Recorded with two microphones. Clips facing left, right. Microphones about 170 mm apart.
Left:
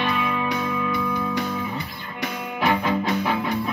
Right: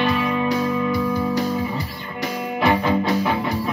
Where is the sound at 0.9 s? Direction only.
35° right (ahead or behind).